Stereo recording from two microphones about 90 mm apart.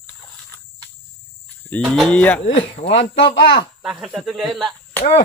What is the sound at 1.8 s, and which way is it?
Speech, centre (ahead or behind).